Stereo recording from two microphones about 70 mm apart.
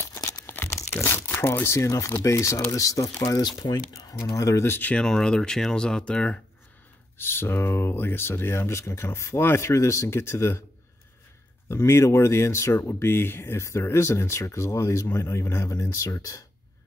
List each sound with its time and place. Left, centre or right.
0.0 s crumpling: left
0.5 s tearing: left
1.0 s speech: left
4.1 s speech: left
4.6 s speech: left
4.9 s speech: centre
7.2 s speech: left
11.7 s speech: left